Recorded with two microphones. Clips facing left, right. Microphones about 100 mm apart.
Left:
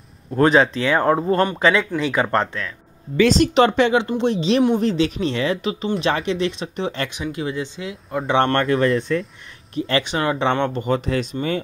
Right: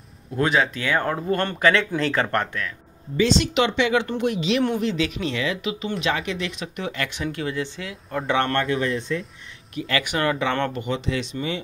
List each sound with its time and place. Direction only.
0.4 s speech: 35° left (ahead or behind)
1.4 s speech: 15° left (ahead or behind)
3.3 s speech: 40° left (ahead or behind)
3.9 s speech: 20° left (ahead or behind)
7.3 s speech: 20° left (ahead or behind)
8.4 s speech: 40° left (ahead or behind)
9.8 s speech: 30° left (ahead or behind)
10.8 s speech: 45° left (ahead or behind)